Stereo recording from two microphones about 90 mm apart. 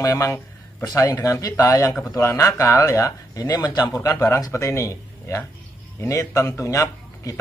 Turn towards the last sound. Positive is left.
turn(degrees=35)  # may be behind; listen again after turning